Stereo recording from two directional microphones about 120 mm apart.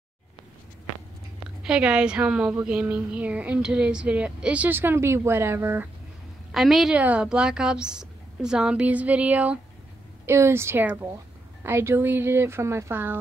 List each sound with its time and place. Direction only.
1.6 s a woman's voice: 5° right (ahead or behind)
6.5 s a woman's voice: centre (ahead or behind)
10.2 s speech: 20° right (ahead or behind)